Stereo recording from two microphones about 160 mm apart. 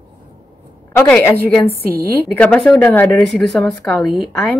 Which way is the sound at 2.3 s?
5° left (ahead or behind).